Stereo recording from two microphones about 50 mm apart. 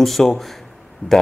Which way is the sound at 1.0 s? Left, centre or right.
Left.